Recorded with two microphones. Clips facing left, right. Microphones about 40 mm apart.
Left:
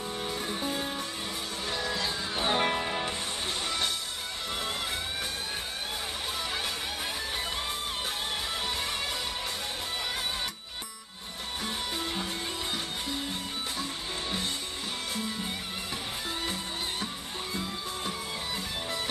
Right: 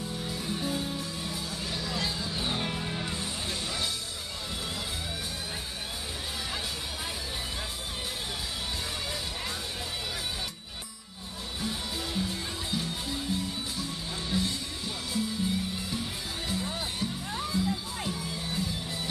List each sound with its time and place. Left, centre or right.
0.3 s music: left
11.6 s music: left
14.3 s music: left
17.0 s music: left